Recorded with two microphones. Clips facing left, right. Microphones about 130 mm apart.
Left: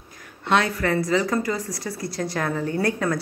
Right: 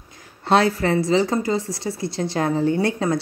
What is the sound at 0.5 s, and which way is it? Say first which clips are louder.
A woman's voice: right 4 dB; 30° right (ahead or behind).